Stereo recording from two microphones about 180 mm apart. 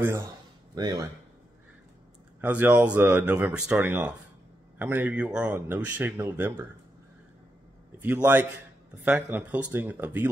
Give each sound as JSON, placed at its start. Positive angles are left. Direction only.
{"t": 0.7, "sound": "speech", "side_deg": -25}
{"t": 2.4, "sound": "speech", "side_deg": -10}
{"t": 8.0, "sound": "speech", "side_deg": -10}